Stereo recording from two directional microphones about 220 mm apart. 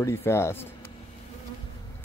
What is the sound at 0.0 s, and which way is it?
Speech, 10° left (ahead or behind).